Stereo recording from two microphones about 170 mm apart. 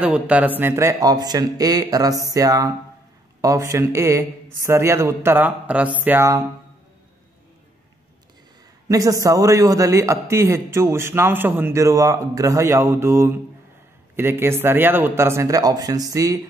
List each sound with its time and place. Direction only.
0.0 s a man's voice: 10° right (ahead or behind)
8.8 s a man's voice: 20° right (ahead or behind)